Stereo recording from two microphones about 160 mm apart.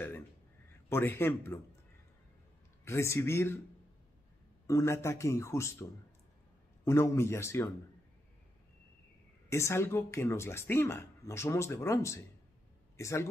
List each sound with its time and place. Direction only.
0.8 s speech: 15° left (ahead or behind)
2.8 s speech: 15° left (ahead or behind)
4.6 s speech: 20° left (ahead or behind)
9.5 s speech: 15° left (ahead or behind)